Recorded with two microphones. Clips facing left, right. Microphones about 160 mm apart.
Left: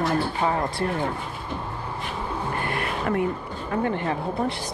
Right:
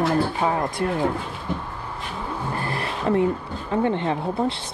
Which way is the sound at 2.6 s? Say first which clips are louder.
Right 2 dB; 35° right (ahead or behind).